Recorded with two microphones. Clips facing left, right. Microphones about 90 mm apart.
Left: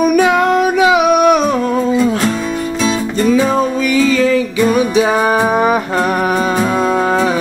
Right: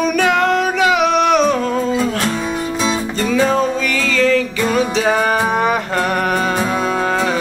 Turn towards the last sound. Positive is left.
turn(degrees=20)  # may be behind; listen again after turning